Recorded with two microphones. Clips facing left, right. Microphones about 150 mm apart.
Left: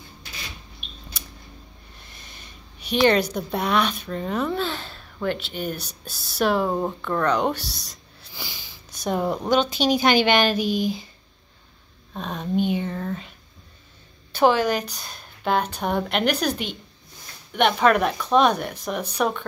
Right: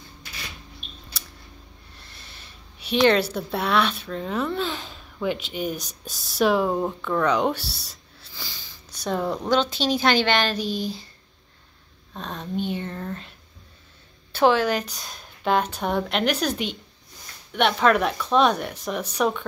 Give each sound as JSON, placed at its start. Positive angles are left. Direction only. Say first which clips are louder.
{"t": 2.9, "sound": "a woman's voice", "louder": "even", "side_deg": 0}
{"t": 4.6, "sound": "a woman's voice", "louder": "left 1 dB", "side_deg": -5}
{"t": 8.4, "sound": "a sound", "louder": "left 3 dB", "side_deg": 15}
{"t": 9.5, "sound": "a woman's voice", "louder": "left 2 dB", "side_deg": 5}
{"t": 12.1, "sound": "a woman's voice", "louder": "left 4 dB", "side_deg": 5}
{"t": 14.3, "sound": "a woman's voice", "louder": "even", "side_deg": 5}